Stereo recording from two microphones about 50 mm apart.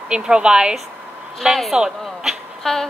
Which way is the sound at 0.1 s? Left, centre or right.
Centre.